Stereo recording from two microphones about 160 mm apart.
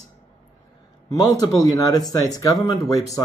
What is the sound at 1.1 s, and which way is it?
Speech, 20° left (ahead or behind).